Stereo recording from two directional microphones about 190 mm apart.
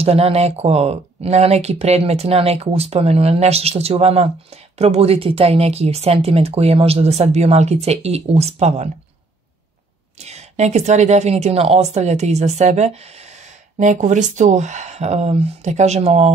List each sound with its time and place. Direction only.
0.0 s speech: 30° right (ahead or behind)
10.2 s speech: 35° right (ahead or behind)